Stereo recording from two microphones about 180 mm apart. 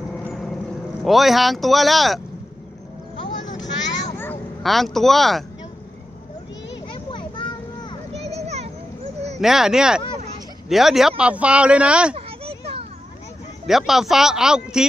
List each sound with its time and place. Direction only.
0.3 s vehicle: centre (ahead or behind)
1.0 s speech: centre (ahead or behind)
3.6 s a sound: 90° left
4.6 s speech: centre (ahead or behind)
7.1 s a sound: 25° left (ahead or behind)
8.1 s a sound: 35° right (ahead or behind)
9.4 s speech: centre (ahead or behind)
12.2 s children playing: 35° right (ahead or behind)
13.7 s speech: centre (ahead or behind)